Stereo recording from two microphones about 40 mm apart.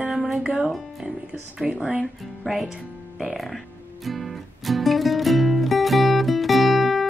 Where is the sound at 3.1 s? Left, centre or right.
Centre.